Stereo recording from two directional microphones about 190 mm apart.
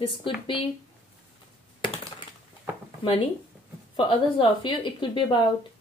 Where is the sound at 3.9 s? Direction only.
25° left (ahead or behind).